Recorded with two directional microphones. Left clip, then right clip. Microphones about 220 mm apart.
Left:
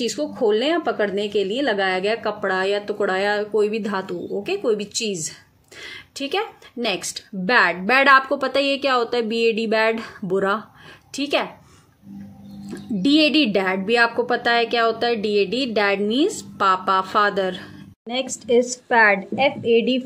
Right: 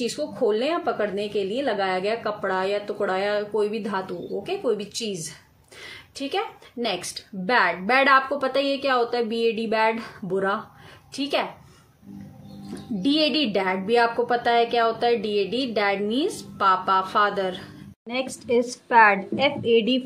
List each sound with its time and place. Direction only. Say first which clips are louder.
0.0 s a woman's voice: left 3 dB; 40° left (ahead or behind)
13.0 s a woman's voice: left 5 dB; 40° left (ahead or behind)
18.0 s a woman's voice: left 3 dB; 15° left (ahead or behind)